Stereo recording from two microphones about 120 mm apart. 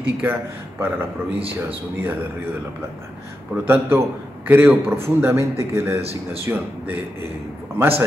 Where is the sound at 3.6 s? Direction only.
20° right (ahead or behind).